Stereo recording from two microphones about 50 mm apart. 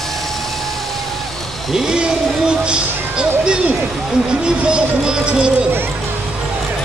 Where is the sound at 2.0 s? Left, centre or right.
Centre.